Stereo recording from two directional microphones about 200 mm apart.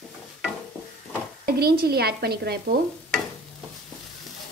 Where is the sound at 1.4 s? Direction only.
50° right (ahead or behind).